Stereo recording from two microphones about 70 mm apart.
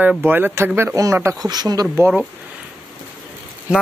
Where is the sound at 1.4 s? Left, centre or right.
Right.